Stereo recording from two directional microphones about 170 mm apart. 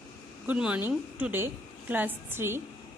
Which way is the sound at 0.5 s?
10° right (ahead or behind).